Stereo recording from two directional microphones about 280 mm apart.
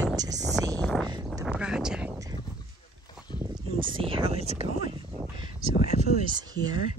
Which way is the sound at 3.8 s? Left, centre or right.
Centre.